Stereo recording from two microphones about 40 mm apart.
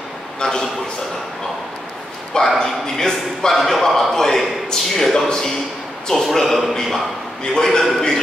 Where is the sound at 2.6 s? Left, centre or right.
Centre.